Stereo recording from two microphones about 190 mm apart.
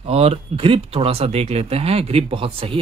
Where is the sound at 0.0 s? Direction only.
30° right (ahead or behind).